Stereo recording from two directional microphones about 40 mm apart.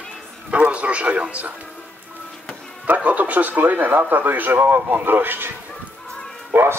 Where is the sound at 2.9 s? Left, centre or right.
Right.